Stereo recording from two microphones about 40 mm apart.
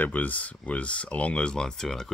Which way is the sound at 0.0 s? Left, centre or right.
Left.